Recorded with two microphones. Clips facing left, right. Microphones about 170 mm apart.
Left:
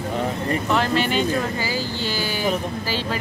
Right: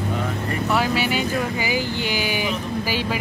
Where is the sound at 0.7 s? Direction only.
10° right (ahead or behind).